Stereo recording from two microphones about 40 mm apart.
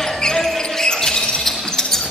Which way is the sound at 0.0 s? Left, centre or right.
Centre.